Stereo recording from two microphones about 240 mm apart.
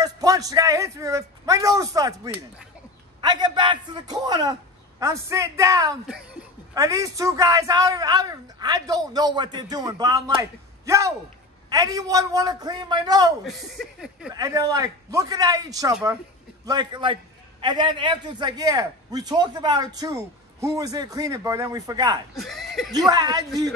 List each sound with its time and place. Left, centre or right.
0.0 s a man's voice: centre
13.4 s speech: centre
14.3 s a man's voice: centre
15.9 s speech: centre
16.6 s a man's voice: centre
22.4 s speech: centre
22.9 s a man's voice: centre